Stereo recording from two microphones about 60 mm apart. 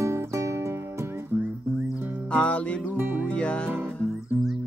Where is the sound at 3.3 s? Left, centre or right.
Centre.